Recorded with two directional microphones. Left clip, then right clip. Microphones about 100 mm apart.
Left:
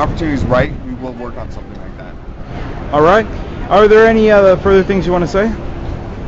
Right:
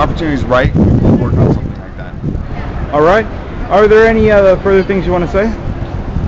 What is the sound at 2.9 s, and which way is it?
Speech, 30° left (ahead or behind).